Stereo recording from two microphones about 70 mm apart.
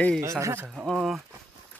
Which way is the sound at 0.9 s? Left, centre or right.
Centre.